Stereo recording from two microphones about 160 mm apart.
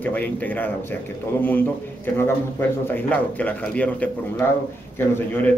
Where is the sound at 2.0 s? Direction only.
15° left (ahead or behind).